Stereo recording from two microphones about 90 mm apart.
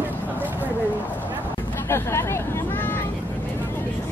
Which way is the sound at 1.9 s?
30° left (ahead or behind).